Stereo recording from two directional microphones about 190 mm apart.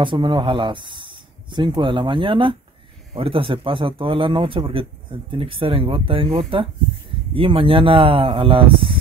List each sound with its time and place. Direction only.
0.0 s speech: 25° right (ahead or behind)